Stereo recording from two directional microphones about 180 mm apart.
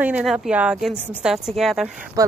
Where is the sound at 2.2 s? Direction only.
20° right (ahead or behind).